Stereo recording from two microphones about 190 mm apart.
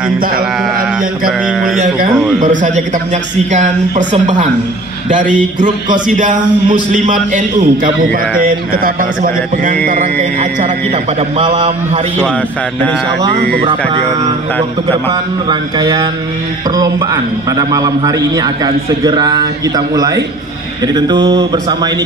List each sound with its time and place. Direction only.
2.4 s speech: 40° right (ahead or behind)
11.3 s a man's voice: 25° right (ahead or behind)
13.4 s speech: 60° right (ahead or behind)
15.8 s a man's voice: 20° right (ahead or behind)
20.8 s a man's voice: 20° right (ahead or behind)